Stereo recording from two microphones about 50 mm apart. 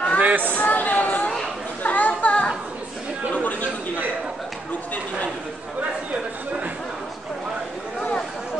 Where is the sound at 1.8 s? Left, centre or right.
Left.